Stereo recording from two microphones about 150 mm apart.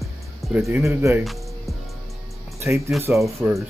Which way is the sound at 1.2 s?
Centre (ahead or behind).